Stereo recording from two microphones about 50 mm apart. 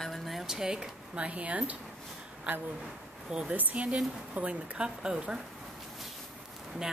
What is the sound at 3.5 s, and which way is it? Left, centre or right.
Speech, right.